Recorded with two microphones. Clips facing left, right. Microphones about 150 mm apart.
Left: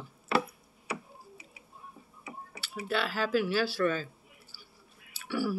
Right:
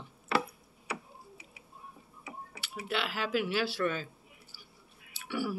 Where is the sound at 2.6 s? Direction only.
20° right (ahead or behind).